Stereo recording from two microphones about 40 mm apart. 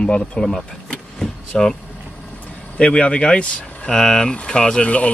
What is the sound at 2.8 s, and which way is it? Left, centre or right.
Speech, left.